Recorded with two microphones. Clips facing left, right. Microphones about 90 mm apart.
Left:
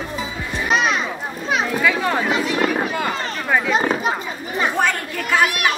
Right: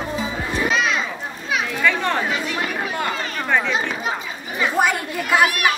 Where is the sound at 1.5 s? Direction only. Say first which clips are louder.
Left 3 dB; 35° left (ahead or behind).